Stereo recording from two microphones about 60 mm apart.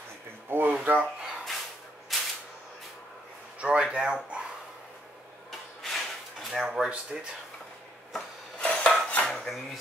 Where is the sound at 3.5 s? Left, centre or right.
Centre.